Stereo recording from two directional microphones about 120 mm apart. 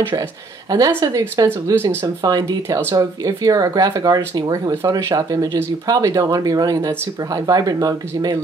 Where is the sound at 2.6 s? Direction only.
20° right (ahead or behind).